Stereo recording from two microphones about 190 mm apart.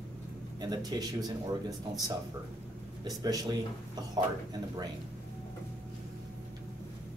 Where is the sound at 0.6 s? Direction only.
20° right (ahead or behind).